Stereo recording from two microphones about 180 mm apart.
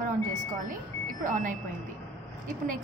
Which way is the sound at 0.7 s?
50° right (ahead or behind).